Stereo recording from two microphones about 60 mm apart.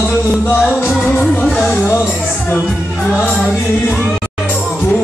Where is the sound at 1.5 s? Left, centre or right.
Left.